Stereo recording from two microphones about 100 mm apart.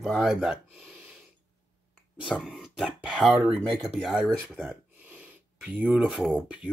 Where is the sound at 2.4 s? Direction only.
5° right (ahead or behind).